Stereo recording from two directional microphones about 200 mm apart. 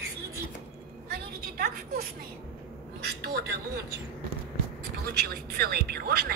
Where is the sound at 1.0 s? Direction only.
50° right (ahead or behind).